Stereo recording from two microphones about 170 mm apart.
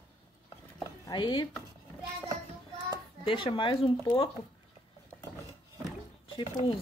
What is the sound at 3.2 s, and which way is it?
Speech, 30° left (ahead or behind).